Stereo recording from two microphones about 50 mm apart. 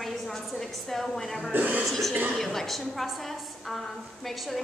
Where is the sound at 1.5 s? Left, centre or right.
Right.